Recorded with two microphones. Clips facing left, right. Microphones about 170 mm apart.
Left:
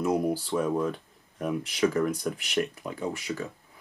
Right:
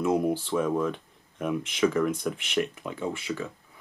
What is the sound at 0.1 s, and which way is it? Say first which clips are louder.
Speech: right 2 dB; 5° right (ahead or behind).